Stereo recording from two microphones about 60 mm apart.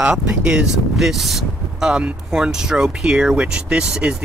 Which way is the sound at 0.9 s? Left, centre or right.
Centre.